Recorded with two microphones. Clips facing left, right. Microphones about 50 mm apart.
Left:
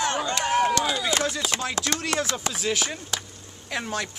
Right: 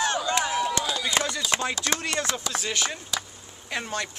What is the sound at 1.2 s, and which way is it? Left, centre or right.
Chopping, centre.